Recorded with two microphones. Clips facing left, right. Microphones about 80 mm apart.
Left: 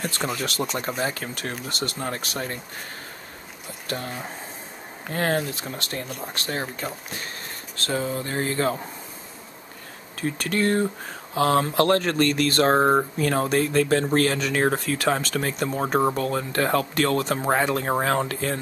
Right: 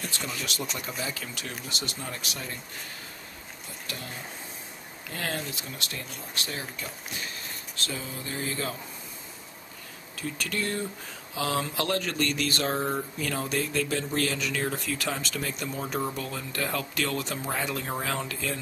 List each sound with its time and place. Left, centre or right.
0.1 s speech: left
3.8 s speech: left
10.1 s speech: left